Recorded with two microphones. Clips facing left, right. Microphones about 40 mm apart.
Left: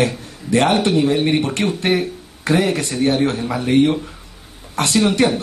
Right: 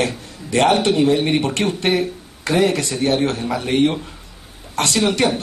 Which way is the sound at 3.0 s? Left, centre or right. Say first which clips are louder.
Left 2 dB; centre.